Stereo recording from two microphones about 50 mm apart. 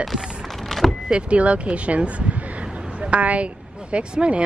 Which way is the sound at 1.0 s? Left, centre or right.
Right.